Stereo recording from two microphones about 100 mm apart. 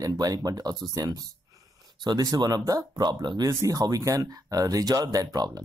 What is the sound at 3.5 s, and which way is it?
Speech, 35° right (ahead or behind).